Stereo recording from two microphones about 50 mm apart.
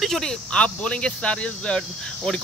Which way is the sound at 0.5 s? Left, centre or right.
Left.